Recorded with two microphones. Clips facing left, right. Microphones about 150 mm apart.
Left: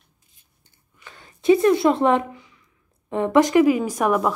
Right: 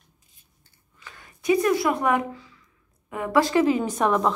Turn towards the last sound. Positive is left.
turn(degrees=10)  # may be behind; listen again after turning